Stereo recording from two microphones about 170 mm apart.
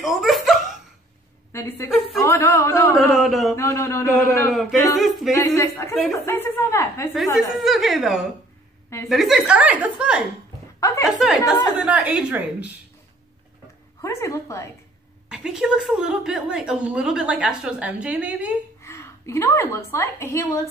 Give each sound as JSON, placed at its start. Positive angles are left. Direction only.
{"t": 0.0, "sound": "a sound", "side_deg": 0}
{"t": 1.5, "sound": "speech", "side_deg": 15}
{"t": 3.2, "sound": "a woman's voice", "side_deg": 0}
{"t": 3.5, "sound": "speech", "side_deg": 15}
{"t": 4.5, "sound": "a woman's voice", "side_deg": 0}
{"t": 5.3, "sound": "speech", "side_deg": 20}
{"t": 7.3, "sound": "a woman's voice", "side_deg": 0}
{"t": 10.8, "sound": "speech", "side_deg": 20}
{"t": 11.1, "sound": "a woman's voice", "side_deg": 0}
{"t": 14.0, "sound": "speech", "side_deg": 15}
{"t": 15.2, "sound": "a woman's voice", "side_deg": -5}
{"t": 18.8, "sound": "a woman's voice", "side_deg": 15}